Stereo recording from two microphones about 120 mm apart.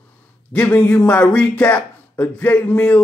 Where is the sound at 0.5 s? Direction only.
10° left (ahead or behind).